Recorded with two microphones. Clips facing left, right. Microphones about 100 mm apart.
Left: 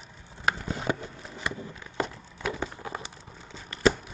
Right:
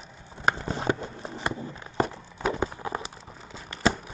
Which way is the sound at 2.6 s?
20° right (ahead or behind).